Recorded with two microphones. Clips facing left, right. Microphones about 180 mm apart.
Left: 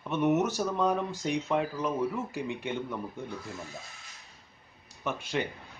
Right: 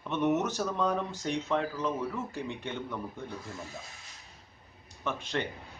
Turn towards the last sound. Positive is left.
turn(degrees=10)  # may be behind; listen again after turning